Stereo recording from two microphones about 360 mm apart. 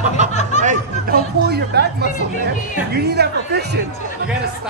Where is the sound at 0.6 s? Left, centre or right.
Right.